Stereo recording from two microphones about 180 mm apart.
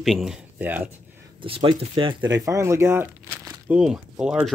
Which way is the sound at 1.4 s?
30° right (ahead or behind).